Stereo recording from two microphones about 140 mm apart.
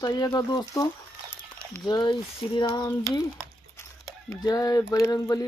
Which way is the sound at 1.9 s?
30° left (ahead or behind).